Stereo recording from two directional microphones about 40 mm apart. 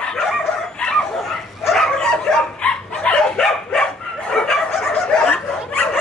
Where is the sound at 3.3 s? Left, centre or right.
Centre.